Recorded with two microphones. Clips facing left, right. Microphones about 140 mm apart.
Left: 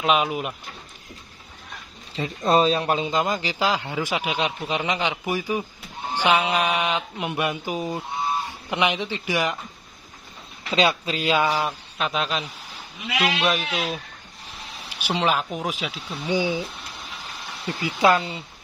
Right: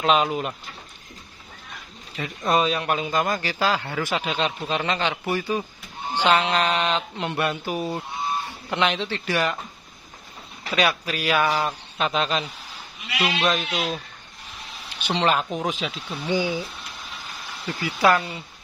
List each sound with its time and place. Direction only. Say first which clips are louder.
0.0 s speech: right 1 dB; 5° left (ahead or behind)
2.1 s speech: left 3 dB; 30° left (ahead or behind); by 9.6 s 15° left (ahead or behind)
10.7 s speech: left 2 dB; 25° left (ahead or behind)
12.0 s speech: right 2 dB; centre (ahead or behind)
15.0 s speech: right 1 dB; 5° left (ahead or behind)
16.3 s speech: left 1 dB; 20° left (ahead or behind)
17.6 s speech: left 1 dB; 25° left (ahead or behind)